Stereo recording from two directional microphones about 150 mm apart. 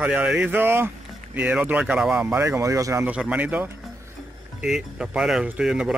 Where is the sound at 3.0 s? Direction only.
10° right (ahead or behind).